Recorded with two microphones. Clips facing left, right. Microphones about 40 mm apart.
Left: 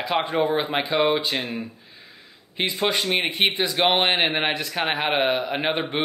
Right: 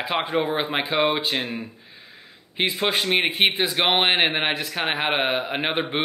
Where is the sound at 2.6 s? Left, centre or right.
Centre.